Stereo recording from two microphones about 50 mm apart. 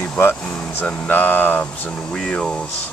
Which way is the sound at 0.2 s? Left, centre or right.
Left.